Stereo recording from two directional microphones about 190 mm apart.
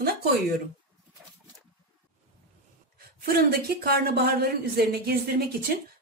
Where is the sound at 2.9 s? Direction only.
55° right (ahead or behind).